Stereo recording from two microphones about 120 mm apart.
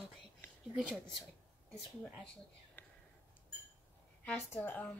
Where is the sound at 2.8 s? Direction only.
15° left (ahead or behind).